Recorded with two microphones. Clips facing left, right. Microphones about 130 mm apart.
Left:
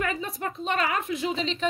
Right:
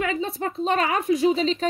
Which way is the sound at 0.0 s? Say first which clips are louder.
Right 4 dB; 25° right (ahead or behind).